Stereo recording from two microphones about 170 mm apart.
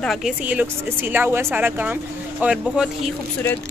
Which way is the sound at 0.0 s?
Centre (ahead or behind).